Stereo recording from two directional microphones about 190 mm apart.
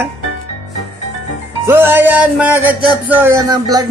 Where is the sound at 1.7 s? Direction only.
10° right (ahead or behind).